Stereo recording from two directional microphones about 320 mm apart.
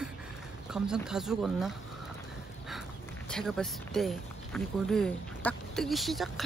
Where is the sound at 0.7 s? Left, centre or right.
Centre.